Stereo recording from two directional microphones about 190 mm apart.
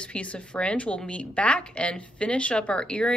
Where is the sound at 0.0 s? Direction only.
5° left (ahead or behind).